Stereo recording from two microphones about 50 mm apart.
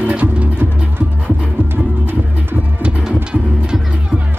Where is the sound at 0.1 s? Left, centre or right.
Right.